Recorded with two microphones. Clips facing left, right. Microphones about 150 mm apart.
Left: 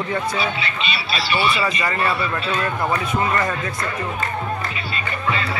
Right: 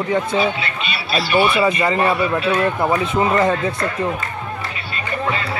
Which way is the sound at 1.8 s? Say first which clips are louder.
Right 5 dB; 15° right (ahead or behind).